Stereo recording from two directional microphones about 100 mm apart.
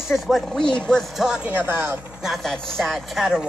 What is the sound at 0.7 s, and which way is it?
Speech, 5° left (ahead or behind).